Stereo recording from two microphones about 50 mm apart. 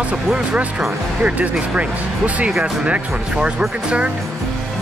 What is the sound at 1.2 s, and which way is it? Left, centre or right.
Speech, right.